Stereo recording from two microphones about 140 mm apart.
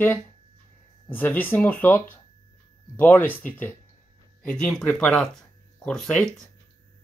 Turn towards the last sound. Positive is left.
turn(degrees=5)  # may be behind; listen again after turning